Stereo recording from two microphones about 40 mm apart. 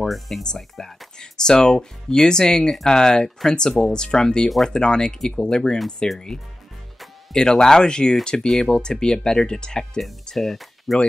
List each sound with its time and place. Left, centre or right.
0.0 s speech: centre
1.2 s speech: centre
10.3 s speech: centre